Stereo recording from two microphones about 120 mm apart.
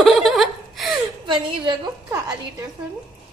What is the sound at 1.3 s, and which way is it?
Speech, 40° right (ahead or behind).